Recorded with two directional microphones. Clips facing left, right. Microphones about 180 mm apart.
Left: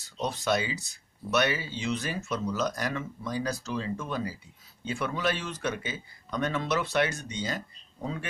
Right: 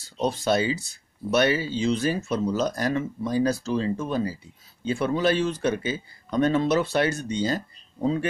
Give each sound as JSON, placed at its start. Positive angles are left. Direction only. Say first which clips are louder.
{"t": 0.0, "sound": "speech", "louder": "right 6 dB", "side_deg": -30}